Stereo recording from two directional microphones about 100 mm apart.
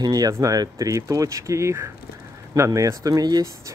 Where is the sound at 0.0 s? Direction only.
40° right (ahead or behind).